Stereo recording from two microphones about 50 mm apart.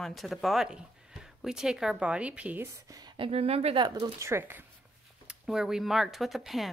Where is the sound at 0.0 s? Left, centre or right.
Centre.